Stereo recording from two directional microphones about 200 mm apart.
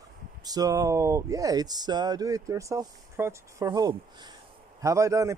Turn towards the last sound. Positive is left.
turn(degrees=-15)  # may be behind; listen again after turning